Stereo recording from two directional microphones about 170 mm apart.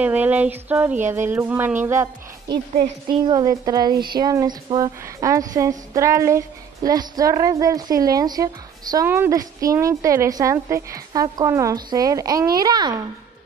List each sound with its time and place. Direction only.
0.0 s a woman's voice: 10° right (ahead or behind)